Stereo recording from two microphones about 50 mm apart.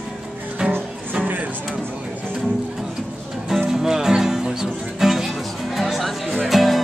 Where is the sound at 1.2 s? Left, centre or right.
Right.